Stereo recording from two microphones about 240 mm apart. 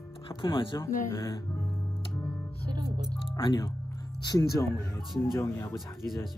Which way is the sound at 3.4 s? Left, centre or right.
Centre.